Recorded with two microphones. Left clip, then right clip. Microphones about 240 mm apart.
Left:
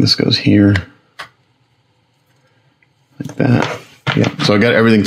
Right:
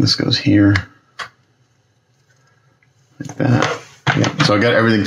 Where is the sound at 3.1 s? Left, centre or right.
Left.